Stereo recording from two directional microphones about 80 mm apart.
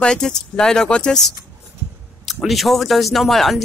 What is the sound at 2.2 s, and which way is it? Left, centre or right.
Speech, centre.